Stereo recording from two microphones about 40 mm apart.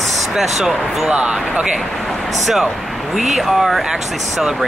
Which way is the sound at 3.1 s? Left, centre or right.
Centre.